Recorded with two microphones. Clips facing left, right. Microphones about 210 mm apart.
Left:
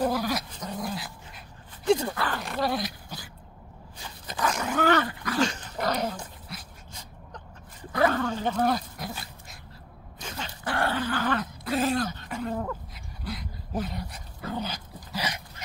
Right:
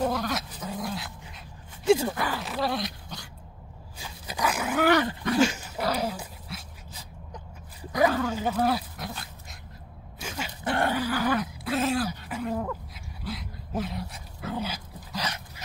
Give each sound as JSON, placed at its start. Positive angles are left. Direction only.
{"t": 0.0, "sound": "dog", "side_deg": 0}
{"t": 1.9, "sound": "speech", "side_deg": -10}
{"t": 4.0, "sound": "dog", "side_deg": -10}
{"t": 10.6, "sound": "dog", "side_deg": -20}
{"t": 11.0, "sound": "dog", "side_deg": -10}
{"t": 15.1, "sound": "dog", "side_deg": 10}